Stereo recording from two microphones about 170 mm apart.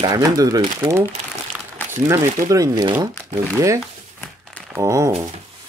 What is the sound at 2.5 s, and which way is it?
Speech, 20° right (ahead or behind).